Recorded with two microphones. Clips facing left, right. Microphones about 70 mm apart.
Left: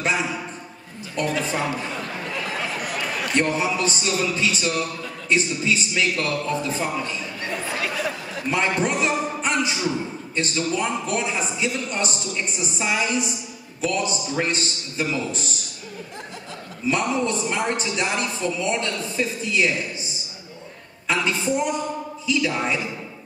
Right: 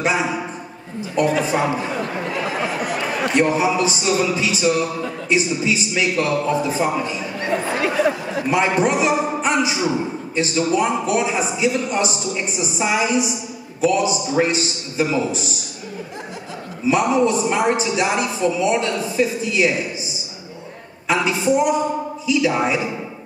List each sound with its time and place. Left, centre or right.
0.0 s a sound: centre
1.1 s a man's voice: centre
2.8 s chatter: right
3.3 s a man's voice: centre
7.4 s speech: right
8.5 s a man's voice: centre
16.8 s a man's voice: centre
21.1 s a man's voice: centre